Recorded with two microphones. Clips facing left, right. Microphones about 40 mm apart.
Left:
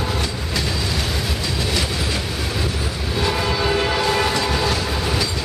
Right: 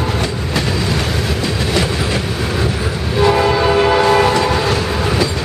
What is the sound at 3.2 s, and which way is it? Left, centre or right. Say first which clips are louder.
Train: right 9 dB; centre.